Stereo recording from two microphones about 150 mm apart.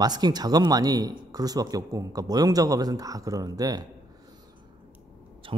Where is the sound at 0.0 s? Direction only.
25° right (ahead or behind).